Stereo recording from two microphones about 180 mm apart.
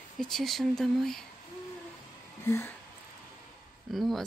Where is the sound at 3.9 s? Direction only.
Centre (ahead or behind).